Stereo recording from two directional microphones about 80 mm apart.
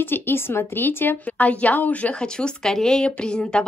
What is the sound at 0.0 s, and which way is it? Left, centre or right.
A woman's voice, left.